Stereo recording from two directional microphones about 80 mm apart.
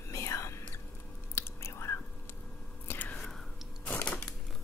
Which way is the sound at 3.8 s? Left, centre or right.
Centre.